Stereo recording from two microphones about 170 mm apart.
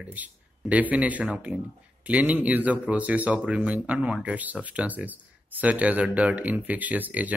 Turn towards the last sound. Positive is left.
turn(degrees=-10)  # may be behind; listen again after turning